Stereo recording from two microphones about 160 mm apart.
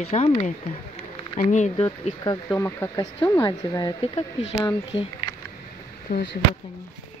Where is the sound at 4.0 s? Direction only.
40° left (ahead or behind).